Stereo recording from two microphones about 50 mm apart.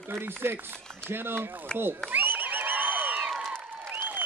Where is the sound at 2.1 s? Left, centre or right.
Right.